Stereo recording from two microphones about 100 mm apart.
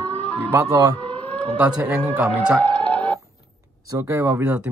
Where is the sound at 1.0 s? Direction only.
15° left (ahead or behind).